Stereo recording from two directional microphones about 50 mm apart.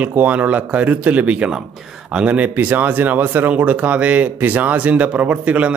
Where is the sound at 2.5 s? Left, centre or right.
Right.